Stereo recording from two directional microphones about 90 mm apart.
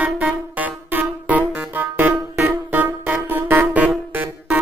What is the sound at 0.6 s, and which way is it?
Music, 20° right (ahead or behind).